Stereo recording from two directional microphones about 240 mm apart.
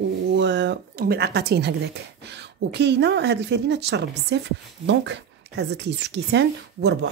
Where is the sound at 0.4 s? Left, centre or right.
Right.